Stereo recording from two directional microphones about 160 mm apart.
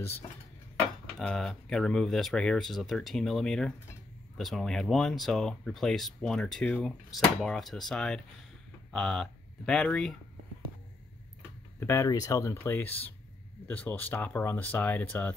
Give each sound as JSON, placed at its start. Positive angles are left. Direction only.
{"t": 1.1, "sound": "speech", "side_deg": 5}
{"t": 11.8, "sound": "speech", "side_deg": 15}